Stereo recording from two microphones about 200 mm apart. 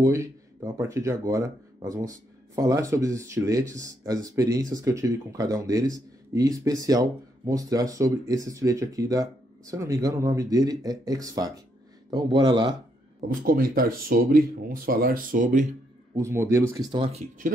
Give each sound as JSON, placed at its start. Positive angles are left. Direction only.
{"t": 0.0, "sound": "a man's voice", "side_deg": -15}
{"t": 13.3, "sound": "speech", "side_deg": -45}
{"t": 16.2, "sound": "speech", "side_deg": -15}
{"t": 17.0, "sound": "speech", "side_deg": -35}